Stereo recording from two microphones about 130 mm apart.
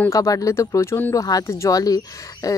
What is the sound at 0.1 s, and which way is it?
A woman's voice, 25° left (ahead or behind).